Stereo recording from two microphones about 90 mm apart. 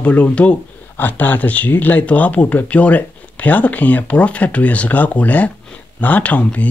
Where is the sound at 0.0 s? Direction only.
15° left (ahead or behind).